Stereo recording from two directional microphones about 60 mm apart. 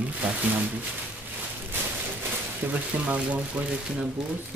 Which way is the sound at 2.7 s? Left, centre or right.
Right.